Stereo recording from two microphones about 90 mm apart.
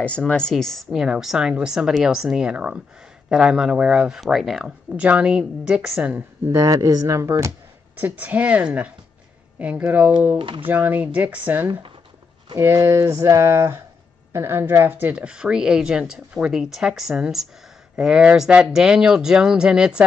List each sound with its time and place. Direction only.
0.0 s speech: 10° left (ahead or behind); by 6.5 s 20° right (ahead or behind)
6.5 s speech: 35° right (ahead or behind)
8.0 s speech: 15° right (ahead or behind)